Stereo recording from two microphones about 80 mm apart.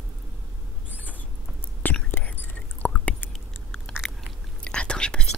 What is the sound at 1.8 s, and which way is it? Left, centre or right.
Whispering, left.